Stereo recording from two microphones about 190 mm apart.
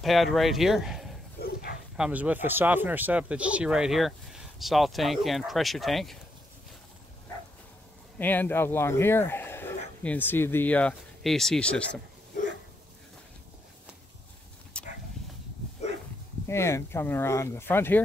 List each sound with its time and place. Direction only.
0.0 s speech: centre (ahead or behind)
1.4 s a sound: 55° left (ahead or behind)
2.0 s speech: 5° right (ahead or behind)
8.2 s speech: 10° left (ahead or behind)
14.7 s a sound: 5° left (ahead or behind)
16.4 s speech: 15° left (ahead or behind)